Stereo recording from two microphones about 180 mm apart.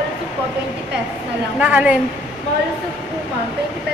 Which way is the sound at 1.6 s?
5° right (ahead or behind).